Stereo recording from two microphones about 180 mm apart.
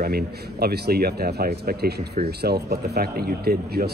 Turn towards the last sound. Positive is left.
turn(degrees=-60)  # may be behind; listen again after turning